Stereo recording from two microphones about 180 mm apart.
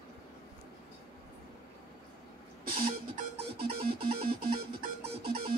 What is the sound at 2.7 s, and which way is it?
Music, 55° right (ahead or behind).